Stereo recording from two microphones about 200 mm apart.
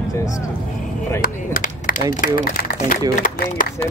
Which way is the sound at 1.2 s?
45° left (ahead or behind).